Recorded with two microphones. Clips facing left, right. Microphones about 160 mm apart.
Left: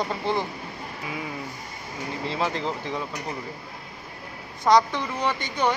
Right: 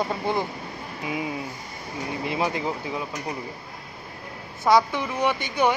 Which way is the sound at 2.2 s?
15° right (ahead or behind).